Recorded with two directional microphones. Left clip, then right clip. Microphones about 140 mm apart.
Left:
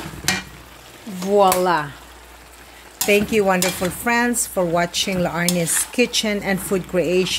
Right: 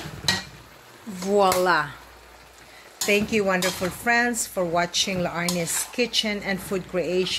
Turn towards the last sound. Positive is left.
turn(degrees=50)  # may be behind; listen again after turning